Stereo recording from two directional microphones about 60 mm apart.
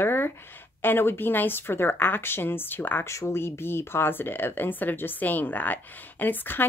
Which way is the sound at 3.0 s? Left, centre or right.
Left.